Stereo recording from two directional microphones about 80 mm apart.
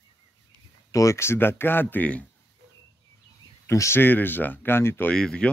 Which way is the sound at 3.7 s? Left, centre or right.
Left.